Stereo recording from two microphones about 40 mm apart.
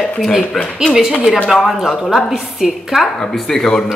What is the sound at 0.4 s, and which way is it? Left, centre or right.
Speech, left.